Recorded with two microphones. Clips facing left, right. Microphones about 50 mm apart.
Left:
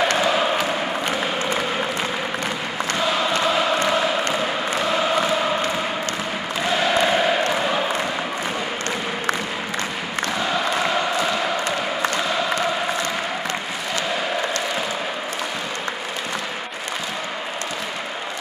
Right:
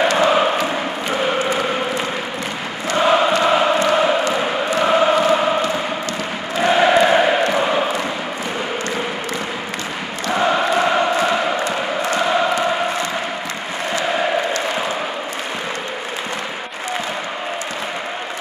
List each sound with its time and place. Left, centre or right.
0.2 s chant: right
2.9 s chant: right
6.6 s chant: right
10.3 s chant: right